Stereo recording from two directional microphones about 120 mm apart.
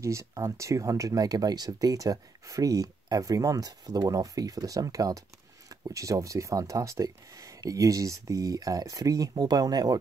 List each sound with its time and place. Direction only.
0.0 s speech: 25° right (ahead or behind)